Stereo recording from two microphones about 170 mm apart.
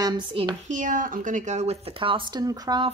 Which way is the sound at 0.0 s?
30° right (ahead or behind).